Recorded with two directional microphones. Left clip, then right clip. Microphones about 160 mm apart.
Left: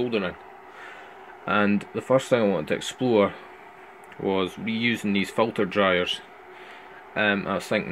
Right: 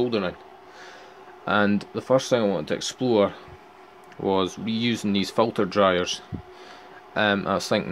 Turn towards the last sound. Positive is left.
turn(degrees=-20)  # may be behind; listen again after turning